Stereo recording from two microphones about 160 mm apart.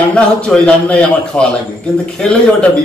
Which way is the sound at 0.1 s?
5° left (ahead or behind).